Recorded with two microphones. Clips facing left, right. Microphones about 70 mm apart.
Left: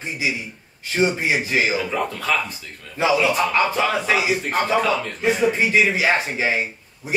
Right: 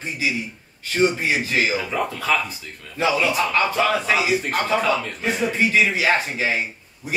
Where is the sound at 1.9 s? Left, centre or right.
Centre.